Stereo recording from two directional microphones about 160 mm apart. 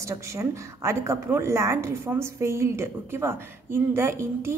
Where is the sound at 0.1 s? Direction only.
20° right (ahead or behind).